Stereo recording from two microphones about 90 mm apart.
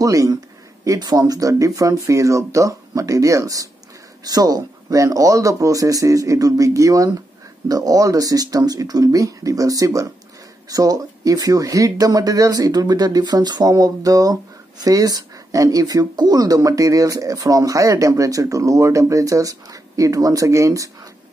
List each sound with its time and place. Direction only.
0.0 s speech: 40° right (ahead or behind)